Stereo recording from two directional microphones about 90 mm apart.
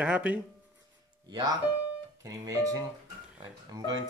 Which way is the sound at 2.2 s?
40° right (ahead or behind).